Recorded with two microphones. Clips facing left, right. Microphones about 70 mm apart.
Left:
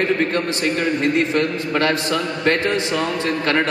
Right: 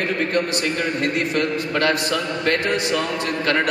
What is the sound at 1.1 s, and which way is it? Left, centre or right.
A man's voice, left.